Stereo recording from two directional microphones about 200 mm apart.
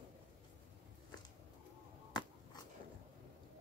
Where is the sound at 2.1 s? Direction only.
20° left (ahead or behind).